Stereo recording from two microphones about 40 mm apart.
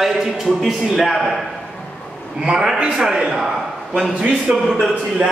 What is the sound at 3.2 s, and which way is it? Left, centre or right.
A man's voice, centre.